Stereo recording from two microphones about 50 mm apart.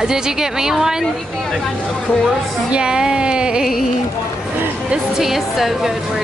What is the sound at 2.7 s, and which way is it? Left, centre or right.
Speech, centre.